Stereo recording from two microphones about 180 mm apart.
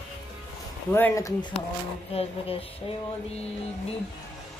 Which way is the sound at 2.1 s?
35° left (ahead or behind).